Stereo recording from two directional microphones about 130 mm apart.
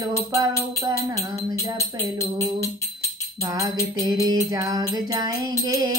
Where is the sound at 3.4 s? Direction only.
25° right (ahead or behind).